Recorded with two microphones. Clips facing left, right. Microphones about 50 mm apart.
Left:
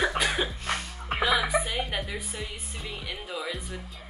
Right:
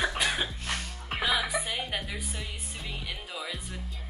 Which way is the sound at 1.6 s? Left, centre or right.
Centre.